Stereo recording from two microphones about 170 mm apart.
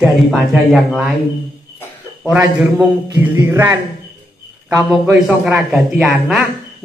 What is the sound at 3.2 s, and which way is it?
Speech, 15° right (ahead or behind).